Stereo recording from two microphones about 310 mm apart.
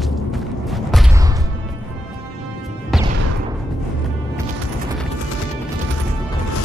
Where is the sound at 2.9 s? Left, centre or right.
Centre.